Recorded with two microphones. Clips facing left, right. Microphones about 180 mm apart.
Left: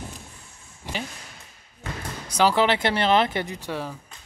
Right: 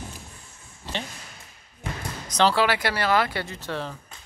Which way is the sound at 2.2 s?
10° left (ahead or behind).